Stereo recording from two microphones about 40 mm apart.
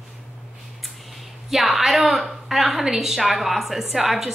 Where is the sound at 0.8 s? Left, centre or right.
Centre.